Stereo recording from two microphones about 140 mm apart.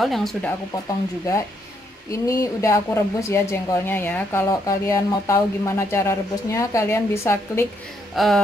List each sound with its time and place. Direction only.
0.0 s speech: centre (ahead or behind)
2.0 s speech: 25° left (ahead or behind)
8.2 s speech: centre (ahead or behind)